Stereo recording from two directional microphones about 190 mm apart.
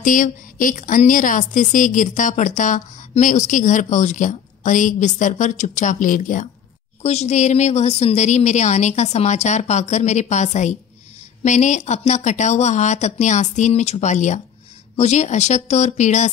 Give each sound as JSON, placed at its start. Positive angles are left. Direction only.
{"t": 0.0, "sound": "a woman's voice", "side_deg": 45}